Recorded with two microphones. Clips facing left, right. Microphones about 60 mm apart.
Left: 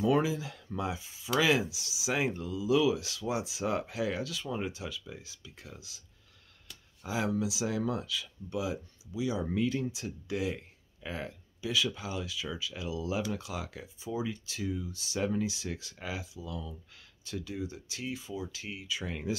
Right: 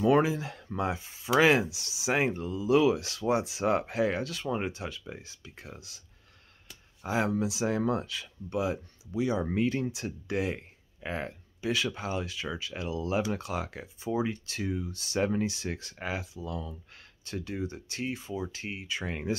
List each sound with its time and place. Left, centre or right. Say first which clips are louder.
0.0 s speech: right 4 dB; right
7.1 s speech: right 3 dB; right